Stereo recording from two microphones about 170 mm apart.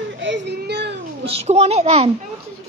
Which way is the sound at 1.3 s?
40° right (ahead or behind).